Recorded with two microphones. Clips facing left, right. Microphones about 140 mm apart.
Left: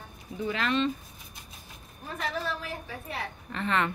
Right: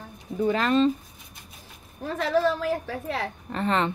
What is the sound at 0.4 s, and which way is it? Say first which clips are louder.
Speech: right 7 dB; 45° right (ahead or behind).